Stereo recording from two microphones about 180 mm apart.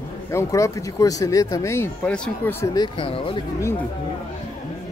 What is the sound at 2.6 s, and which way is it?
Speech, 25° left (ahead or behind).